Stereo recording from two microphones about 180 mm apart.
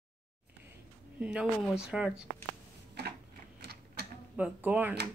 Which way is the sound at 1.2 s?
5° right (ahead or behind).